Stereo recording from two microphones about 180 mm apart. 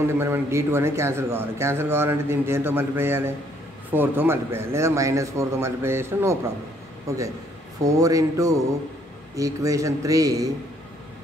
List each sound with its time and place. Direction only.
0.2 s a man's voice: 15° right (ahead or behind)
7.8 s a man's voice: 20° right (ahead or behind)